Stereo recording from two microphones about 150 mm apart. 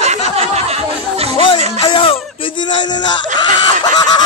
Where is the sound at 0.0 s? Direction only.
45° right (ahead or behind).